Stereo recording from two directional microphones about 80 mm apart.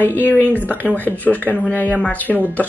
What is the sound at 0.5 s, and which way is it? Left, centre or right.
A woman's voice, left.